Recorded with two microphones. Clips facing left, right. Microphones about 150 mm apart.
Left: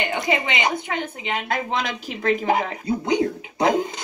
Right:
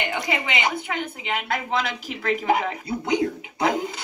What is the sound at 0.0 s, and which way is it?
A woman's voice, 35° left (ahead or behind).